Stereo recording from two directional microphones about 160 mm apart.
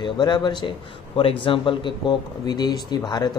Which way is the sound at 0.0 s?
25° left (ahead or behind).